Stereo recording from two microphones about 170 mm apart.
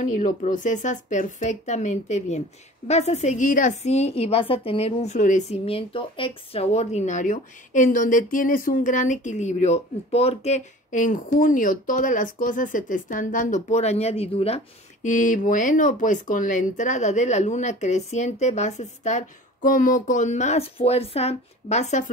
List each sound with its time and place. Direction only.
0.0 s a woman's voice: 50° left (ahead or behind)
15.0 s a woman's voice: 50° left (ahead or behind)